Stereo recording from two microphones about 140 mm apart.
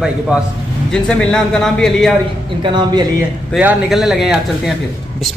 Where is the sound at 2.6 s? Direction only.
35° right (ahead or behind).